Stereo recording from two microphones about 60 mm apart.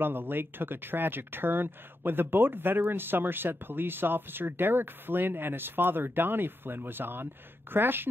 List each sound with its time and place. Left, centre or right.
0.0 s speech: right